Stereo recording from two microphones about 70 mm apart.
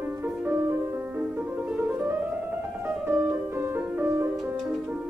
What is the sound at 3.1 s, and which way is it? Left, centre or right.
Music, right.